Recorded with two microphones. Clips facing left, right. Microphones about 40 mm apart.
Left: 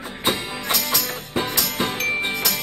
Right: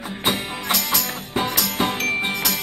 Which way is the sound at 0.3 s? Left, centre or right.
Centre.